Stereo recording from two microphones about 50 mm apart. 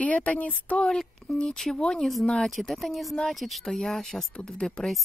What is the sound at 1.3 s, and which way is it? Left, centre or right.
Speech, centre.